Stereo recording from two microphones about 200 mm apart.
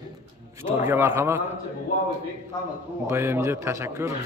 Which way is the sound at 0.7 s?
10° right (ahead or behind).